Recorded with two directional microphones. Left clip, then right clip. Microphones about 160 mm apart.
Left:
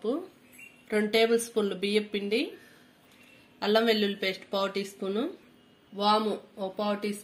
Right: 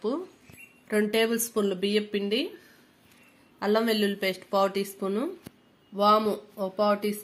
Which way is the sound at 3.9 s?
70° right (ahead or behind).